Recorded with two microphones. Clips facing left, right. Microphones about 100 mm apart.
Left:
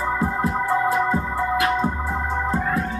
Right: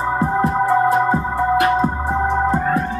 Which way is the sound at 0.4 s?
35° right (ahead or behind).